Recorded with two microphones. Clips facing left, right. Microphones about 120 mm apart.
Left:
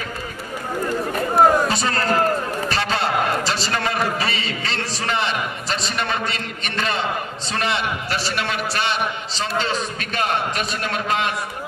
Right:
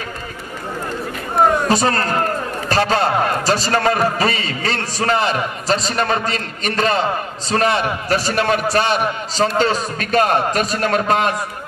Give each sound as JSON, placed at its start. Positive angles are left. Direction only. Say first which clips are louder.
{"t": 1.7, "sound": "a man's voice", "louder": "right 4 dB", "side_deg": -40}